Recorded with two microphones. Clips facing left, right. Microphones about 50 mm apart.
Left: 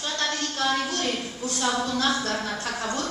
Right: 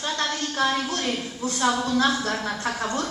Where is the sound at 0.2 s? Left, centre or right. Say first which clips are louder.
Right 2 dB; centre.